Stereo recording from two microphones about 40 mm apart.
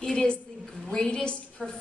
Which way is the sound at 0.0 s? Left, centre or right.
Centre.